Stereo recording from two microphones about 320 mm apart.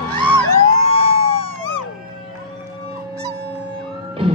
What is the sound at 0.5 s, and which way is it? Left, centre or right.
Emergency vehicle, centre.